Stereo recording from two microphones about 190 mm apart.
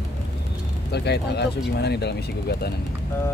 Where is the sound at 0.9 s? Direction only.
60° left (ahead or behind).